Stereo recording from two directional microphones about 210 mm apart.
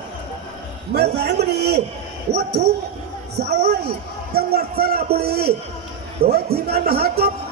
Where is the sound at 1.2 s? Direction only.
50° right (ahead or behind).